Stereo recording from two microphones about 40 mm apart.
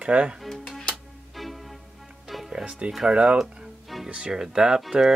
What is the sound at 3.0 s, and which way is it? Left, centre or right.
Speech, right.